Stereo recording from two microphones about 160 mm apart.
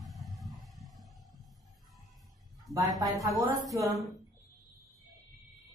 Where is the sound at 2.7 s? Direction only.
Centre (ahead or behind).